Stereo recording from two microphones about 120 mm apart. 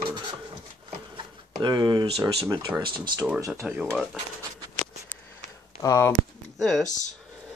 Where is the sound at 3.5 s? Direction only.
5° right (ahead or behind).